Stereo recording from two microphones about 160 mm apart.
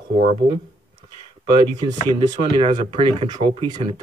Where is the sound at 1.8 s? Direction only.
30° right (ahead or behind).